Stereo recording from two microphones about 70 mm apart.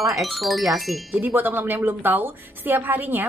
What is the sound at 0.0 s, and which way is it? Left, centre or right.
Speech, centre.